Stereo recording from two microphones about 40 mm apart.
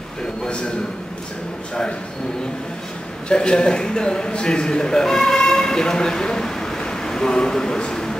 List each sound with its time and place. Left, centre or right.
3.3 s a man's voice: left